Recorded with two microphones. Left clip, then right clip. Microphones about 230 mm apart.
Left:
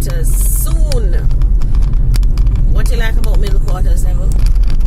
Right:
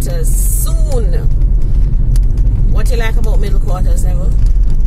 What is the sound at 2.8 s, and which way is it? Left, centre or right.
Speech, right.